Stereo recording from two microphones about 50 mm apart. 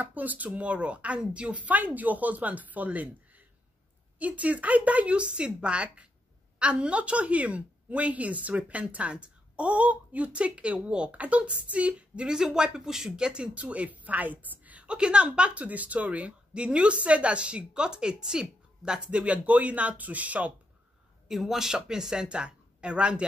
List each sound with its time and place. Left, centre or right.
0.0 s speech: right
12.4 s speech: centre
19.0 s speech: right
21.3 s speech: centre; by 23.2 s right